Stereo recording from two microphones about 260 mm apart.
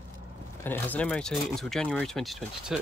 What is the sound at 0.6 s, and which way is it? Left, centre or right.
Speech, centre.